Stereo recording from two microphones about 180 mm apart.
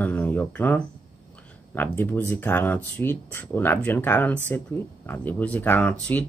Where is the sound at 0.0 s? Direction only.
10° left (ahead or behind).